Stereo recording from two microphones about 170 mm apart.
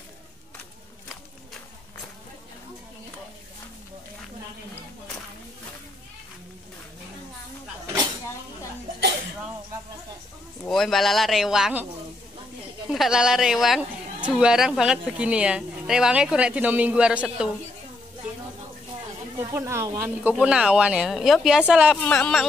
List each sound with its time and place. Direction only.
10.6 s speech: centre (ahead or behind)
12.9 s speech: centre (ahead or behind)
19.3 s speech: 15° right (ahead or behind)
22.0 s speech: 10° left (ahead or behind)